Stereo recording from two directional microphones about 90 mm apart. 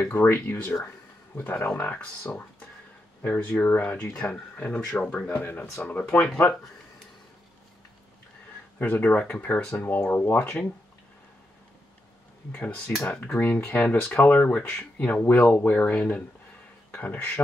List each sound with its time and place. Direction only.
0.0 s speech: 25° left (ahead or behind)
3.5 s speech: 20° left (ahead or behind)
5.3 s speech: 25° left (ahead or behind)
5.9 s speech: 10° left (ahead or behind)
8.7 s speech: 20° left (ahead or behind)
12.5 s speech: 15° left (ahead or behind)